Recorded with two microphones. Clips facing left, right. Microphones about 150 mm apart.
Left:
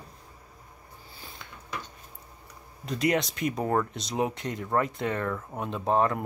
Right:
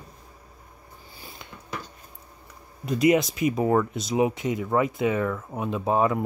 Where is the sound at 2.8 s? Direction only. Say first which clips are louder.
Right 6 dB; 5° right (ahead or behind).